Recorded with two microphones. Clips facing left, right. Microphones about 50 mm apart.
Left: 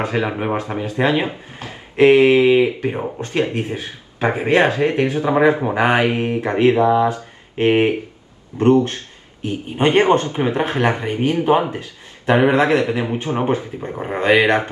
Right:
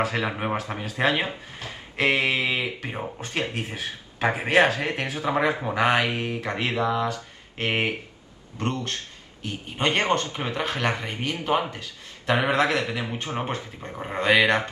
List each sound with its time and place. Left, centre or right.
0.0 s speech: left
0.7 s speech: centre
1.0 s speech: left
4.2 s speech: left
8.5 s speech: left
9.4 s speech: left
14.3 s speech: left